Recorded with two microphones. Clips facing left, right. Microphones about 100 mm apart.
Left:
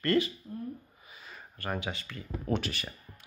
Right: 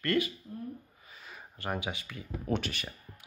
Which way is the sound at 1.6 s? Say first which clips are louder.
Even; 15° right (ahead or behind).